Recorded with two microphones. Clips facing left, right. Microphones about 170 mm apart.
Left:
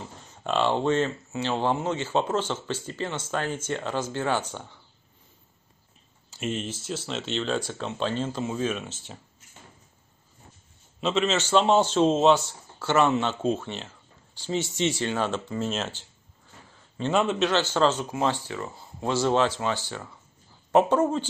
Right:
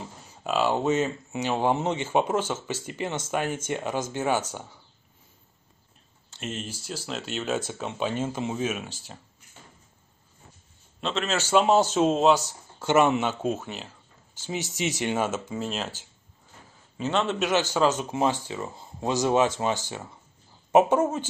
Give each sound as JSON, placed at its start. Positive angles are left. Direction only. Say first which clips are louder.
{"t": 0.3, "sound": "speech", "louder": "even", "side_deg": -5}
{"t": 6.3, "sound": "speech", "louder": "left 4 dB", "side_deg": 0}
{"t": 8.8, "sound": "speech", "louder": "left 1 dB", "side_deg": 0}
{"t": 11.0, "sound": "speech", "louder": "left 4 dB", "side_deg": 0}
{"t": 12.7, "sound": "speech", "louder": "right 1 dB", "side_deg": -15}
{"t": 14.5, "sound": "speech", "louder": "left 3 dB", "side_deg": -15}
{"t": 15.3, "sound": "speech", "louder": "left 2 dB", "side_deg": -5}
{"t": 17.1, "sound": "a man's voice", "louder": "left 2 dB", "side_deg": 5}
{"t": 17.4, "sound": "speech", "louder": "even", "side_deg": -10}